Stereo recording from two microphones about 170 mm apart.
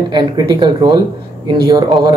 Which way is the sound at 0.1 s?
25° right (ahead or behind).